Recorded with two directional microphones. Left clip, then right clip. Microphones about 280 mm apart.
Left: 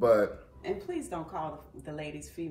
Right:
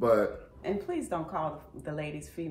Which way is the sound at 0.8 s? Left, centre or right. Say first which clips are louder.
Right 3 dB; centre.